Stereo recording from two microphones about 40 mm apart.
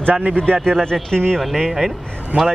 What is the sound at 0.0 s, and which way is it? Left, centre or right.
Speech, right.